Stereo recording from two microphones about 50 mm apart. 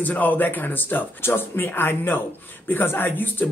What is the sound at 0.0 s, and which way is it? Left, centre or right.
A man's voice, left.